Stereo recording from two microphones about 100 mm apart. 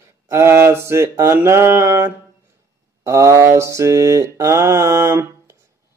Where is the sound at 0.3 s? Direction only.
25° right (ahead or behind).